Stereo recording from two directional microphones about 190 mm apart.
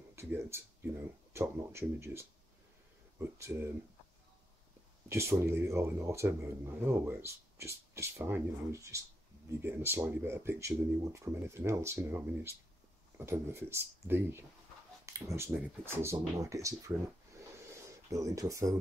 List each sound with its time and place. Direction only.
0.1 s speech: 15° right (ahead or behind)
5.0 s speech: 15° right (ahead or behind)
17.6 s a sound: 15° right (ahead or behind)